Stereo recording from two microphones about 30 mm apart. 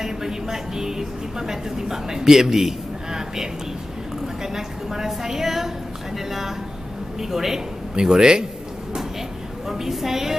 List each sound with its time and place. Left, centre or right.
0.0 s a woman's voice: centre
3.1 s vehicle: centre
4.4 s a woman's voice: centre
7.9 s speech: right
9.7 s a woman's voice: centre